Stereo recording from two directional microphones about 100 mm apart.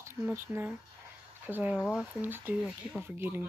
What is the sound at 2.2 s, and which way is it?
Speech, 20° right (ahead or behind).